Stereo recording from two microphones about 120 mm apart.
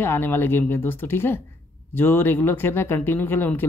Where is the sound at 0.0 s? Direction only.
20° left (ahead or behind).